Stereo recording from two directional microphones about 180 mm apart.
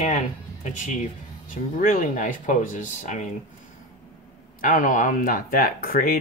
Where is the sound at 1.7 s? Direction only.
50° left (ahead or behind).